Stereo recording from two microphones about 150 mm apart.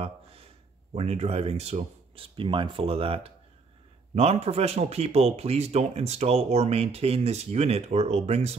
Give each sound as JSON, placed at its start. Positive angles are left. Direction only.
{"t": 0.9, "sound": "speech", "side_deg": -45}